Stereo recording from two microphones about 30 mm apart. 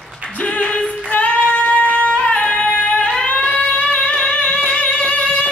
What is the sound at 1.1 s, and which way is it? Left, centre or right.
Female singing, left.